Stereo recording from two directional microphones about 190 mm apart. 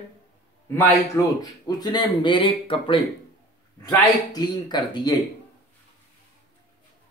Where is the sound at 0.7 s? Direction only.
15° left (ahead or behind).